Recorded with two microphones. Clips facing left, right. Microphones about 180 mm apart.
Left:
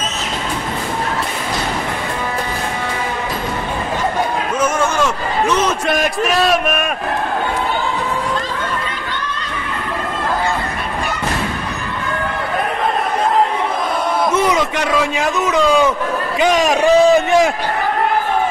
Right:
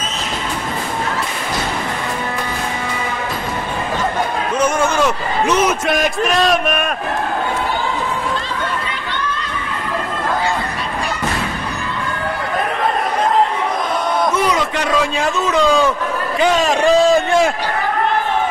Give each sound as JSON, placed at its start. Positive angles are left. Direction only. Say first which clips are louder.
{"t": 5.7, "sound": "a man's voice", "louder": "even", "side_deg": 0}
{"t": 14.3, "sound": "a sound", "louder": "left 2 dB", "side_deg": 20}
{"t": 15.0, "sound": "a man's voice", "louder": "even", "side_deg": 15}